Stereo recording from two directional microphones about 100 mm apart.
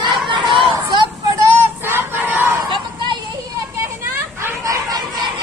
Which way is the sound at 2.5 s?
50° right (ahead or behind).